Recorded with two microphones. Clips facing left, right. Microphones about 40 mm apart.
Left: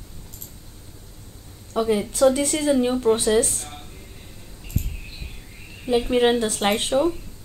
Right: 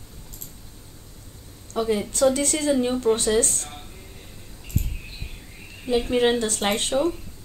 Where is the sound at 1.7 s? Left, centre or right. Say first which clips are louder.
Left 2 dB; centre.